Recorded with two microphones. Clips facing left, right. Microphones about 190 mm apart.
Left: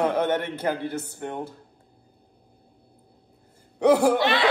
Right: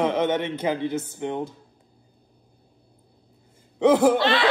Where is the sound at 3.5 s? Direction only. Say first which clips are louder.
Even; 20° right (ahead or behind).